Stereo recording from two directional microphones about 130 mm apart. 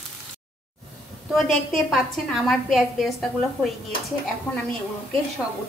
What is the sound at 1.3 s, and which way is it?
A woman's voice, centre (ahead or behind).